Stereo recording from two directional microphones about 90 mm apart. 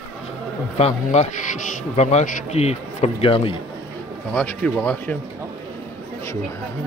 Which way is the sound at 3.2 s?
90° left.